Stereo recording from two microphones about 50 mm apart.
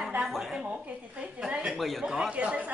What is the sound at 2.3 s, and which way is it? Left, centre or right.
Speech, right.